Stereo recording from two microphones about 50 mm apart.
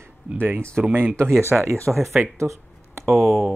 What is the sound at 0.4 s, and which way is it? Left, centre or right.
Speech, right.